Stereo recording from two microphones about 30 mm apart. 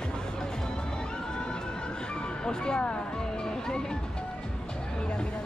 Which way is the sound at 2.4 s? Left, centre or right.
Left.